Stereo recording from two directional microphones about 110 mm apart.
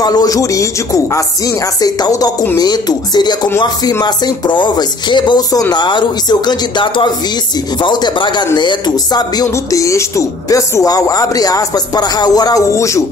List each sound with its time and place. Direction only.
0.0 s speech: 35° left (ahead or behind)